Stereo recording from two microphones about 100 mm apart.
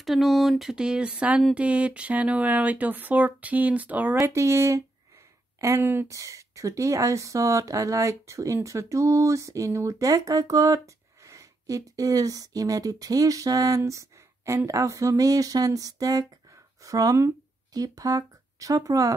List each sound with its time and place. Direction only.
0.0 s speech: centre (ahead or behind)
4.2 s speech: 30° right (ahead or behind)
6.0 s speech: 30° right (ahead or behind)